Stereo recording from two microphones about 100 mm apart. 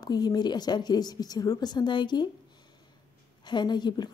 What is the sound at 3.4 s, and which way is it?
Speech, 45° left (ahead or behind).